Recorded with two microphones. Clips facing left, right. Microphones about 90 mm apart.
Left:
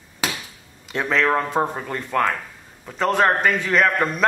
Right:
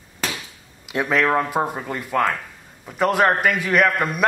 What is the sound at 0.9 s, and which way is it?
A man's voice, 10° right (ahead or behind).